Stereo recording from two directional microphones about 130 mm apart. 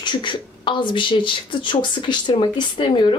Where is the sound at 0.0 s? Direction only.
35° left (ahead or behind).